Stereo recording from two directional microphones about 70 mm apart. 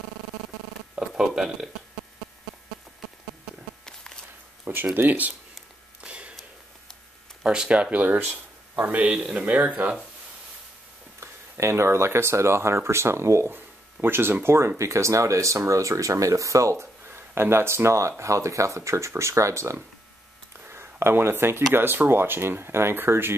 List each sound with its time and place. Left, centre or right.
0.9 s speech: centre
3.8 s walk: centre
4.9 s speech: right
5.9 s a sound: centre
7.4 s speech: centre
11.1 s speech: right
20.6 s a sound: right
21.7 s speech: right